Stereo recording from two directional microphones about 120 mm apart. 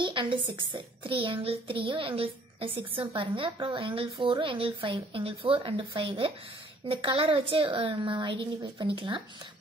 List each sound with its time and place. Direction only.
0.0 s a child's voice: 45° right (ahead or behind)